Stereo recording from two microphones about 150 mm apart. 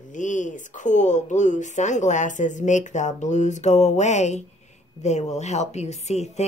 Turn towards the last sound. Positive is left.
turn(degrees=45)  # may be behind; listen again after turning